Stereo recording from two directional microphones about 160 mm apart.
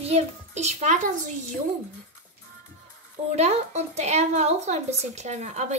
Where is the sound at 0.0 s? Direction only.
40° right (ahead or behind).